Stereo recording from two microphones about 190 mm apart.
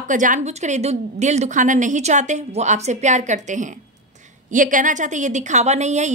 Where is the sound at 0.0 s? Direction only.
40° right (ahead or behind).